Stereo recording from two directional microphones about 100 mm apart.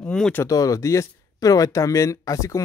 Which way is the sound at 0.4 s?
35° left (ahead or behind).